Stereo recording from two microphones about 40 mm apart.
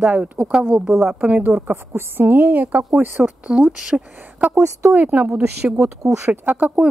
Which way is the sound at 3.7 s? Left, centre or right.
Right.